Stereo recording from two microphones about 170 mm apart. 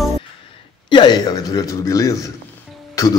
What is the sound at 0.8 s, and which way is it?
A man's voice, 25° left (ahead or behind).